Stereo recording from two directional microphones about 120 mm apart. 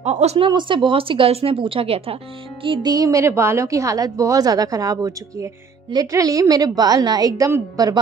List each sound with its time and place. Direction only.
0.0 s a woman's voice: 65° right (ahead or behind)
0.5 s a woman's voice: 40° right (ahead or behind)